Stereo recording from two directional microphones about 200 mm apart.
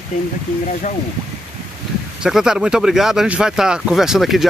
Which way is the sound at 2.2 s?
5° right (ahead or behind).